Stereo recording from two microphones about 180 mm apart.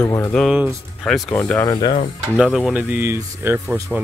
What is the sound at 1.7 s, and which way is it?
Speech, 25° left (ahead or behind).